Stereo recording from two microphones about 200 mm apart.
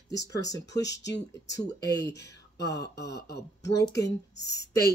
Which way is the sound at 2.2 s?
60° left (ahead or behind).